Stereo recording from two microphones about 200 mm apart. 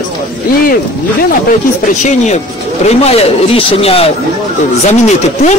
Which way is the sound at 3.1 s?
30° left (ahead or behind).